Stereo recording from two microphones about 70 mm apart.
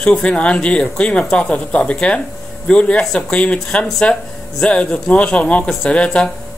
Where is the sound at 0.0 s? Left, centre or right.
Centre.